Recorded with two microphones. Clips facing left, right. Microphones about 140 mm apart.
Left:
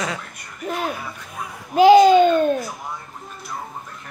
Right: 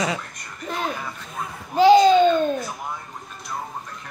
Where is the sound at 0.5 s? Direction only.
10° left (ahead or behind).